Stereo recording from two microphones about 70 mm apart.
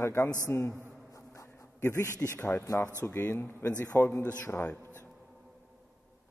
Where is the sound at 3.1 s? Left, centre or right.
Left.